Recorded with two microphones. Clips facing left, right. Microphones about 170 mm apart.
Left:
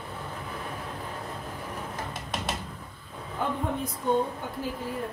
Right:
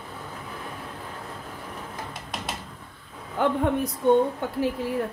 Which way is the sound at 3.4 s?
90° right.